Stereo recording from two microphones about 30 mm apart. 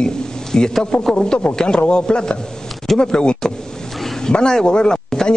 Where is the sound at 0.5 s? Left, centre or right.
Centre; by 3.4 s left.